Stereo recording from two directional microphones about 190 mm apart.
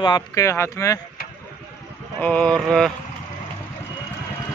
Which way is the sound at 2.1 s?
5° left (ahead or behind).